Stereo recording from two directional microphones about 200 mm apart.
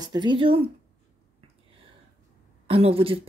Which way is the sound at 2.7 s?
30° right (ahead or behind).